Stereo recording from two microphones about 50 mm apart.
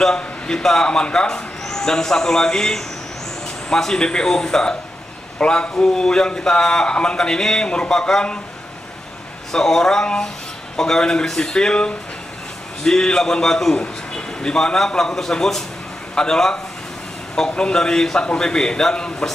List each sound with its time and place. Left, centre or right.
0.0 s speech: centre
9.5 s a man's voice: centre